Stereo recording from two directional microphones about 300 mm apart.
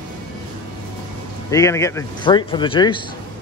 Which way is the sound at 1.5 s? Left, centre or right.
Centre.